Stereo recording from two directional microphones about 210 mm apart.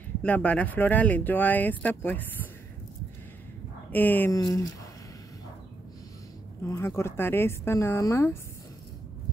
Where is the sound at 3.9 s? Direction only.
10° left (ahead or behind).